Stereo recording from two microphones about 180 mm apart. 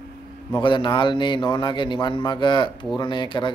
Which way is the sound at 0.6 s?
25° left (ahead or behind).